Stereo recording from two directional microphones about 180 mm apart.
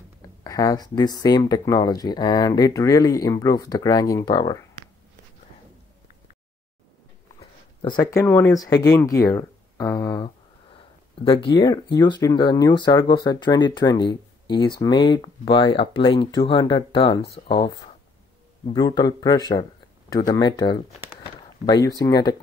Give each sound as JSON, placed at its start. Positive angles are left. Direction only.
{"t": 0.4, "sound": "speech", "side_deg": 20}
{"t": 7.3, "sound": "speech", "side_deg": 25}
{"t": 18.7, "sound": "speech", "side_deg": 25}